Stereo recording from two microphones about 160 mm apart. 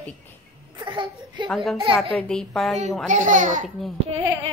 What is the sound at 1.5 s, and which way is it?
Speech, centre (ahead or behind).